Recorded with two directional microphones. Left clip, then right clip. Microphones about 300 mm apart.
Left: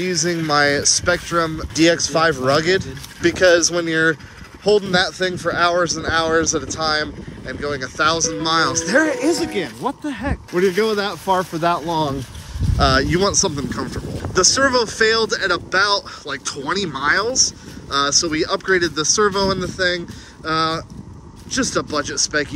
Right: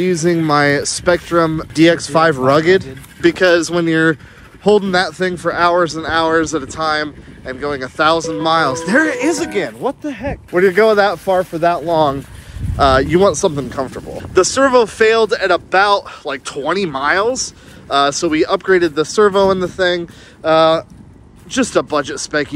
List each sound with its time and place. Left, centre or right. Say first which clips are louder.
0.0 s speech: right 6 dB; centre
9.0 s speech: right 3 dB; right
9.4 s speech: right 4 dB; centre
9.8 s speech: right 3 dB; centre
10.5 s speech: right 7 dB; centre
12.7 s speech: right 5 dB; centre